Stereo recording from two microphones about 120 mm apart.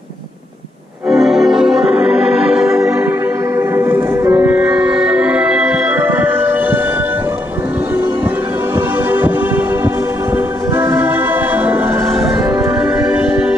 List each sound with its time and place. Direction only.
1.0 s organ: 5° right (ahead or behind)
3.5 s music: 20° right (ahead or behind)
5.9 s music: 20° right (ahead or behind)
8.7 s music: 15° right (ahead or behind)
10.3 s music: 20° right (ahead or behind)